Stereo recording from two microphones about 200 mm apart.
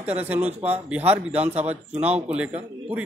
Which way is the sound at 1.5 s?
30° right (ahead or behind).